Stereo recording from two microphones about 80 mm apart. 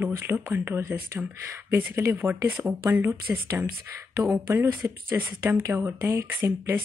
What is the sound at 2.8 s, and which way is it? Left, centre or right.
Speech, right.